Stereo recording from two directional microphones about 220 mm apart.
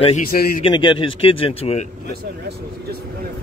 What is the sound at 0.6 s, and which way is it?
A man's voice, 20° left (ahead or behind).